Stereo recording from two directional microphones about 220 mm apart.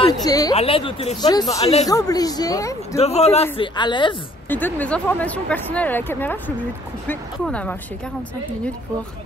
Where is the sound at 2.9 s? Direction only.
30° left (ahead or behind).